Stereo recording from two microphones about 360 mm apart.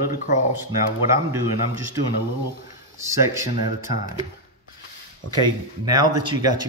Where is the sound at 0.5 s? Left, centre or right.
Centre.